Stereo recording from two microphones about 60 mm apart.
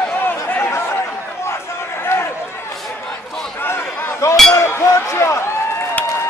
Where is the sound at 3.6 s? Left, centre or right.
Left.